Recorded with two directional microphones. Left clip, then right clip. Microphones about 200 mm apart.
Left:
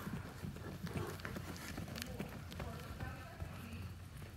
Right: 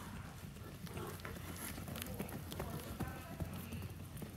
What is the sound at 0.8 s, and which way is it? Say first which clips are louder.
Run: left 2 dB; 15° left (ahead or behind).